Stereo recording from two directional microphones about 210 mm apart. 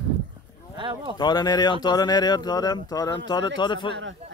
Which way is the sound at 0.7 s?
20° right (ahead or behind).